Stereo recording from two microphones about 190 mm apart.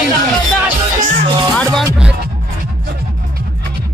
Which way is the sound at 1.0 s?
40° right (ahead or behind).